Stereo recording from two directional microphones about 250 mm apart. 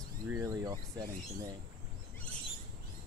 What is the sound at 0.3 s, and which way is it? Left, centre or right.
Speech, centre.